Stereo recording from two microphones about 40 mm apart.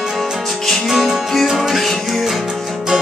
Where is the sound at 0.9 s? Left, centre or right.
Centre.